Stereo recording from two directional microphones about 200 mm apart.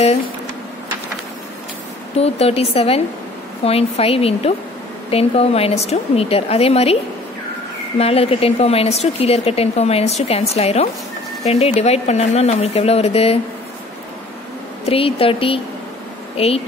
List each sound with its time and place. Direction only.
2.1 s a woman's voice: 30° left (ahead or behind)
8.0 s a woman's voice: 30° left (ahead or behind)
14.9 s a woman's voice: 30° left (ahead or behind)